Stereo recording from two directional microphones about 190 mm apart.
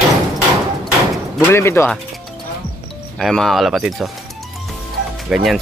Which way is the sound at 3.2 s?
Centre (ahead or behind).